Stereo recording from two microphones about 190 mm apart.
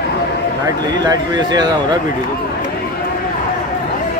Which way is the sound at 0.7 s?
20° right (ahead or behind).